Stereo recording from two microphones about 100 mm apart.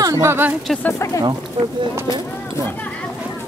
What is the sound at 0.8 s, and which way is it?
Speech, 25° left (ahead or behind).